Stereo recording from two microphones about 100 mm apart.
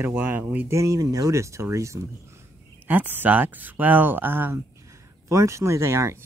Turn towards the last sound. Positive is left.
turn(degrees=-30)  # may be behind; listen again after turning